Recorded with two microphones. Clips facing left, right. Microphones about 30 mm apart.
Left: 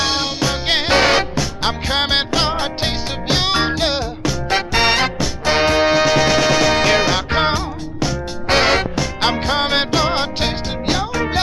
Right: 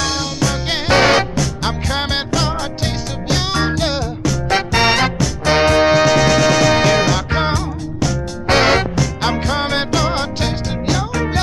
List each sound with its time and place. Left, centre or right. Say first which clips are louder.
0.0 s music: even; left
0.9 s music: right 4 dB; centre